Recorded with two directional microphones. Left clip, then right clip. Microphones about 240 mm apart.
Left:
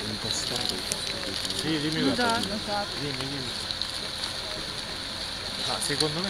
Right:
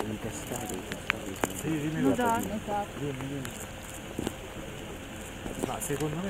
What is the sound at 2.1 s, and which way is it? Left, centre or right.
Speech, left.